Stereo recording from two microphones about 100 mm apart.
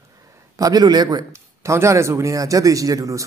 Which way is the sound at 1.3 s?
30° right (ahead or behind).